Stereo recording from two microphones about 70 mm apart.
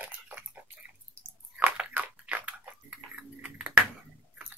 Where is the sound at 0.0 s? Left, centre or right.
Right.